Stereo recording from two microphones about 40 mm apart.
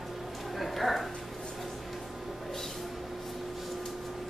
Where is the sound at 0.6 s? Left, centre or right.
Centre.